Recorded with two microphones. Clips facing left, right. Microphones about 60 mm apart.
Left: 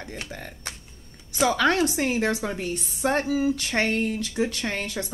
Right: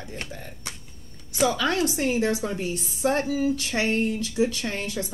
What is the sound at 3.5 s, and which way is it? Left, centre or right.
A woman's voice, left.